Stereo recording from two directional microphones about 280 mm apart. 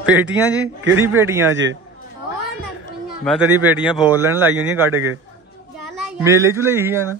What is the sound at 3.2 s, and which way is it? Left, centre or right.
A man's voice, centre.